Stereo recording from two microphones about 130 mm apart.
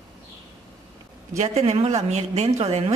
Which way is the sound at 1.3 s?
60° right (ahead or behind).